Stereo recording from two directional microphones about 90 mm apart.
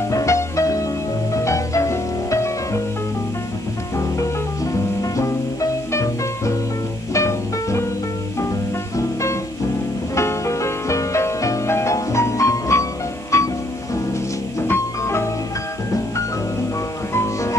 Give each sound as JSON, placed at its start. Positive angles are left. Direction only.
{"t": 0.1, "sound": "music", "side_deg": 35}
{"t": 5.0, "sound": "music", "side_deg": 35}
{"t": 8.9, "sound": "music", "side_deg": 35}
{"t": 14.7, "sound": "music", "side_deg": 30}
{"t": 17.1, "sound": "music", "side_deg": 35}